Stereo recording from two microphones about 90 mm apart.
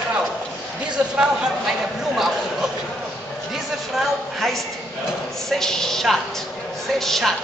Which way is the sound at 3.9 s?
Centre (ahead or behind).